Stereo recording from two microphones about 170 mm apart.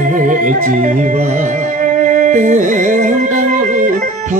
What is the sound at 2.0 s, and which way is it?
Music, 50° right (ahead or behind).